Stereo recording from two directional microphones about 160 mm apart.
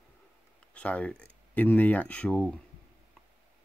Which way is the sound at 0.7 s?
10° left (ahead or behind).